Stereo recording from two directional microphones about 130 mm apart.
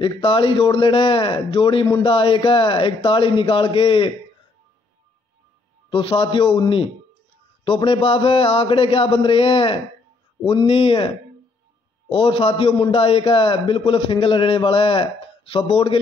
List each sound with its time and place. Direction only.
0.0 s speech: 40° left (ahead or behind)
5.9 s a man's voice: 45° left (ahead or behind)
7.6 s a man's voice: 45° left (ahead or behind)
12.1 s a man's voice: 45° left (ahead or behind)